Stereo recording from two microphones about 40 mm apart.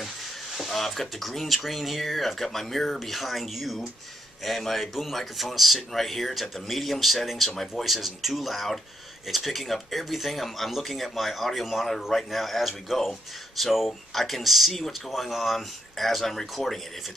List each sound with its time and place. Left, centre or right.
0.6 s speech: centre